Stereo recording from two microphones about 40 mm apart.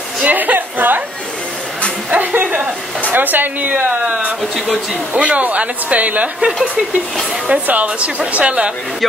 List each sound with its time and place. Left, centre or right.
0.2 s a woman's voice: right
2.0 s a sound: right
3.1 s speech: right
3.6 s speech: right
4.0 s a woman's voice: right
5.1 s speech: right
7.6 s a woman's voice: right